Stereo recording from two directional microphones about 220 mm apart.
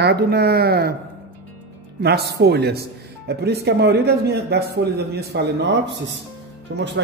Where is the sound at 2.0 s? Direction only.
50° right (ahead or behind).